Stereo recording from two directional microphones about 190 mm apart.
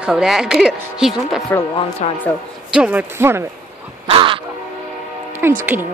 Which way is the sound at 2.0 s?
35° left (ahead or behind).